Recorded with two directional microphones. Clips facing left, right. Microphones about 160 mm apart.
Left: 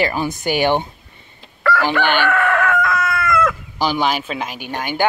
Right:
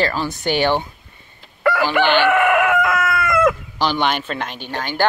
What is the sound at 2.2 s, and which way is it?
Chicken, 15° right (ahead or behind).